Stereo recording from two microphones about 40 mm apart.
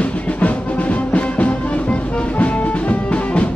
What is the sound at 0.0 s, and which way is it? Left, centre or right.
Music, left.